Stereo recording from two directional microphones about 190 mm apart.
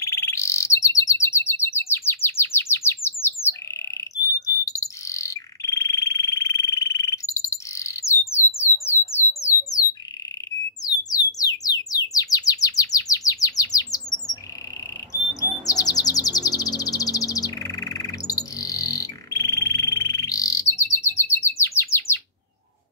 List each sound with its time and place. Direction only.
0.0 s bird: 15° left (ahead or behind)
4.6 s bird: 15° left (ahead or behind)
11.1 s bird: 20° left (ahead or behind)
15.6 s bird vocalization: 20° left (ahead or behind)